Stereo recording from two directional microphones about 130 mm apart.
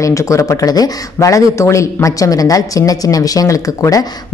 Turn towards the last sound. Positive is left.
turn(degrees=25)  # may be behind; listen again after turning